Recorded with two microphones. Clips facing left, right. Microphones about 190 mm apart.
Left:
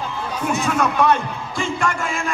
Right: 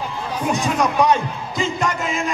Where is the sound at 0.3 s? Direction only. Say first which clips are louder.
Right 1 dB; 15° right (ahead or behind).